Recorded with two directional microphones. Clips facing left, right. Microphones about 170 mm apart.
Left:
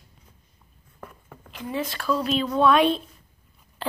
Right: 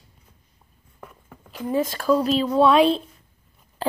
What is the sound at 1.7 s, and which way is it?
Speech, 45° right (ahead or behind).